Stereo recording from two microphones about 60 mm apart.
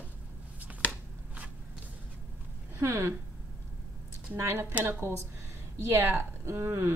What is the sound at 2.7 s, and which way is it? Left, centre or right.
Speech, right.